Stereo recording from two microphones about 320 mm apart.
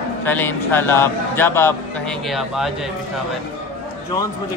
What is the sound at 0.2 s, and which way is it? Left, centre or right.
A man's voice, centre.